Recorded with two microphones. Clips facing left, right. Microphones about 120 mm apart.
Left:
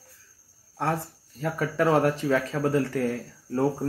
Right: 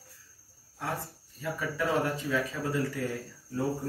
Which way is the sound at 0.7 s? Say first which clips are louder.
Left 8 dB; 70° left (ahead or behind).